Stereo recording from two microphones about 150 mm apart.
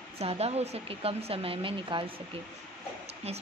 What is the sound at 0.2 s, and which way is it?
A woman's voice, 45° right (ahead or behind).